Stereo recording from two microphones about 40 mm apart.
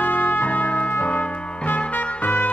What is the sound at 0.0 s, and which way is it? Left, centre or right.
Trumpet, left.